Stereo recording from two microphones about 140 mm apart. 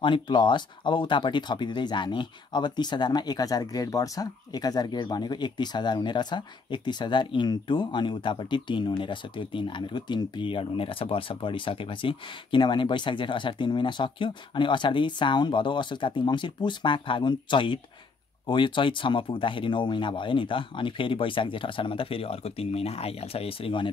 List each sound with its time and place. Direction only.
0.0 s speech: 35° left (ahead or behind)